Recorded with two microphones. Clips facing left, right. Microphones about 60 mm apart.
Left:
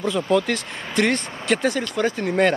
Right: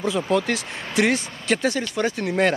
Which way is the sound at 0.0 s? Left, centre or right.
Centre.